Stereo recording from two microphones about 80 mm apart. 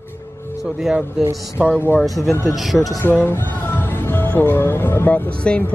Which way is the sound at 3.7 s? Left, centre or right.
Left.